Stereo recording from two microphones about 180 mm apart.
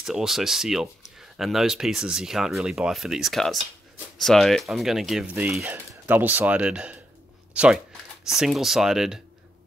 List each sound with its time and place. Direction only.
0.0 s speech: centre (ahead or behind)